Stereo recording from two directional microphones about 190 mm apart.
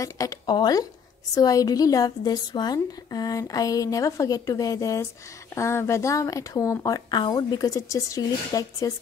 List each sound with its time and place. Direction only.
0.0 s a woman's voice: 15° left (ahead or behind)